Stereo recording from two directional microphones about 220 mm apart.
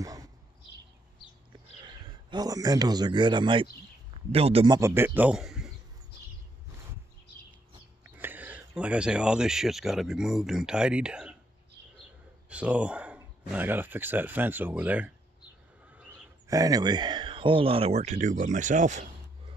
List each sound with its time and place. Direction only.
0.0 s a sound: 15° right (ahead or behind)
1.8 s a man's voice: 20° right (ahead or behind)
4.7 s speech: 10° right (ahead or behind)
8.2 s speech: 10° right (ahead or behind)
12.4 s speech: 5° right (ahead or behind); by 19.0 s 35° right (ahead or behind)